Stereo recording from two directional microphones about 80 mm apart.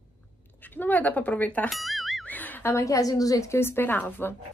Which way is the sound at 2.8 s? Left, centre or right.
Left.